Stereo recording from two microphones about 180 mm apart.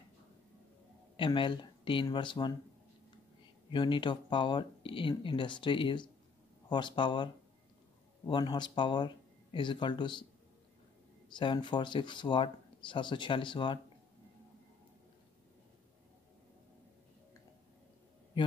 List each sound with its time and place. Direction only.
1.1 s speech: 30° left (ahead or behind)
3.7 s speech: 25° left (ahead or behind)
8.3 s speech: 25° left (ahead or behind)
11.3 s speech: 25° left (ahead or behind)